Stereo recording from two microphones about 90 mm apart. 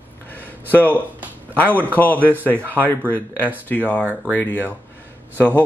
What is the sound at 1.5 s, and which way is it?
Speech, 20° left (ahead or behind).